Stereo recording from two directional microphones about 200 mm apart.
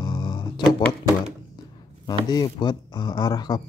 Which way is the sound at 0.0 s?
20° left (ahead or behind).